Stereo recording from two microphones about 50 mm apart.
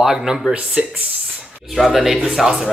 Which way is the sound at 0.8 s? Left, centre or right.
Centre.